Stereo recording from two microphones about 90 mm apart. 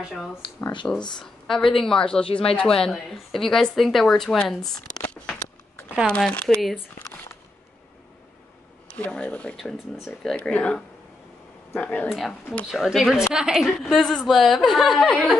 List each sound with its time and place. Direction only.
0.0 s speech: centre (ahead or behind)
5.0 s a sound: 15° left (ahead or behind)
6.0 s speech: 10° left (ahead or behind)
8.8 s speech: 15° left (ahead or behind)
9.7 s speech: centre (ahead or behind)
10.3 s speech: 10° left (ahead or behind)
11.8 s speech: 15° left (ahead or behind)
12.1 s speech: centre (ahead or behind)